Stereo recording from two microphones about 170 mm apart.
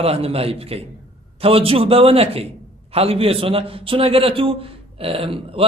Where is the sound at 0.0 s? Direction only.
35° right (ahead or behind).